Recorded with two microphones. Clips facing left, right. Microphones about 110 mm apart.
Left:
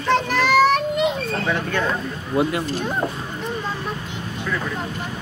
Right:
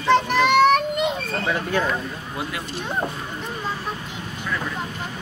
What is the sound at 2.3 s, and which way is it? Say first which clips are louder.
Speech: left 11 dB; 35° left (ahead or behind).